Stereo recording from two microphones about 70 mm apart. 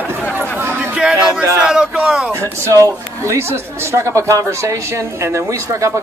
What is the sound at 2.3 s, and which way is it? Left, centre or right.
A woman's voice, right.